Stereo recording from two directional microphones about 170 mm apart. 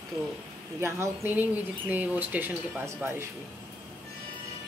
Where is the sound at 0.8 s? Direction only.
15° right (ahead or behind).